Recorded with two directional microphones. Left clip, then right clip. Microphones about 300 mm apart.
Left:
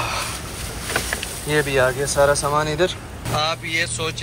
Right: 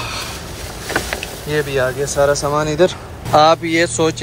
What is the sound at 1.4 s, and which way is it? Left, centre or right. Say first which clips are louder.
Speech: even; centre.